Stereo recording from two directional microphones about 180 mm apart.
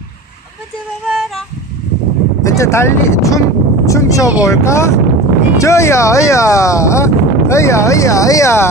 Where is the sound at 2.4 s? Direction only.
15° left (ahead or behind).